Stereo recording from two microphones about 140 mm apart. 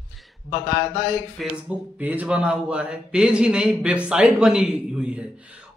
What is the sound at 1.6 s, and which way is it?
A man's voice, 10° right (ahead or behind).